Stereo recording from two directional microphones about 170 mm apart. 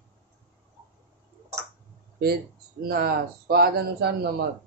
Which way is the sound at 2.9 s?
65° right (ahead or behind).